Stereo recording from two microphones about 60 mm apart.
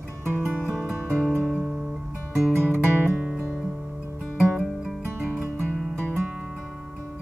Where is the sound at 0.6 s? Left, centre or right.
Centre.